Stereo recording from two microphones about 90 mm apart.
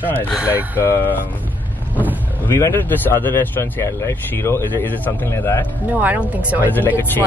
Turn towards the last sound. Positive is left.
turn(degrees=25)  # may be behind; listen again after turning